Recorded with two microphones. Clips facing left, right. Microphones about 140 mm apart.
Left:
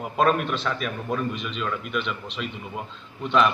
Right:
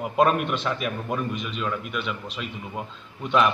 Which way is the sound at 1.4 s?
5° right (ahead or behind).